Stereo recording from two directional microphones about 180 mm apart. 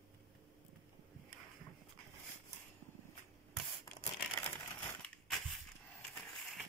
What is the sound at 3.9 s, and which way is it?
Crumpling, 15° left (ahead or behind).